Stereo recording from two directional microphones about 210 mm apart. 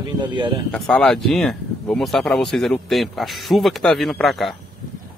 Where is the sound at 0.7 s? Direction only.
5° left (ahead or behind).